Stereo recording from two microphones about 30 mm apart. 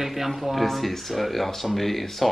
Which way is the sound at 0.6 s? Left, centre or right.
Centre.